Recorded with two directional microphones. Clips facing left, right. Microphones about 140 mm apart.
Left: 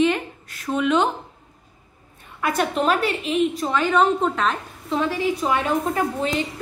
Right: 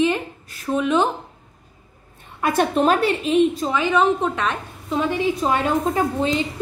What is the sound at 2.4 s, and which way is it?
A woman's voice, 30° right (ahead or behind).